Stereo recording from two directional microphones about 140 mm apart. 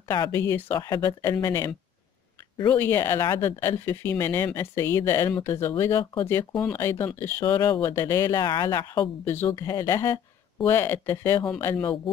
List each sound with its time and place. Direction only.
0.3 s speech: 15° left (ahead or behind)
9.2 s speech: 15° left (ahead or behind)